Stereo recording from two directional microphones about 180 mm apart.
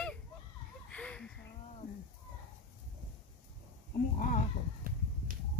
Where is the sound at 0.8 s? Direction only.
5° left (ahead or behind).